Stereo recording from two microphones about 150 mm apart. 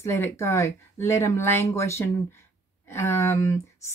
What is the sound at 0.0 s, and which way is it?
Speech, 15° left (ahead or behind).